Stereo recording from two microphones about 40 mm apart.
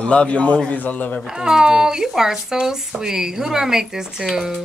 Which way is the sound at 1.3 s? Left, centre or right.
Centre.